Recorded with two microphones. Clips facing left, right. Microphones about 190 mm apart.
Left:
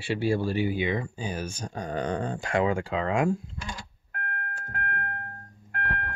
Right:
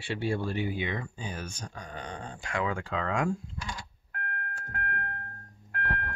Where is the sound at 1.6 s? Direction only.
40° left (ahead or behind).